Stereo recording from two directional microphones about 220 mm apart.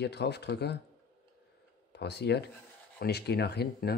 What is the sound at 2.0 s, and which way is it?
Speech, 50° left (ahead or behind).